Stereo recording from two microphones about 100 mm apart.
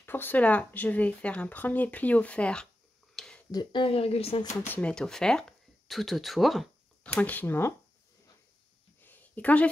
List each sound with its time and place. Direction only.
0.0 s speech: 20° left (ahead or behind)
3.2 s a sound: 5° left (ahead or behind)
3.5 s speech: 55° left (ahead or behind); by 4.4 s 85° left
4.6 s speech: 20° left (ahead or behind)
4.9 s speech: 5° left (ahead or behind)
7.0 s speech: 15° left (ahead or behind)
9.0 s a sound: 20° left (ahead or behind)